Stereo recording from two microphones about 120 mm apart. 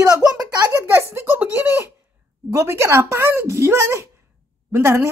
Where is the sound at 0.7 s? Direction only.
20° right (ahead or behind).